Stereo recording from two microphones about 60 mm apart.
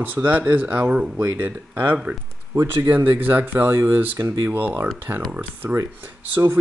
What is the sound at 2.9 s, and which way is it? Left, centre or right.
Speech, right.